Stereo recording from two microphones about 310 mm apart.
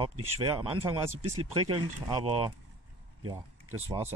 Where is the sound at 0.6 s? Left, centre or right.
Centre.